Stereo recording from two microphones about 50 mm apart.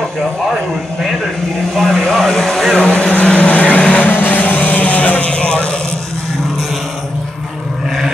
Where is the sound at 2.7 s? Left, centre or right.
Left.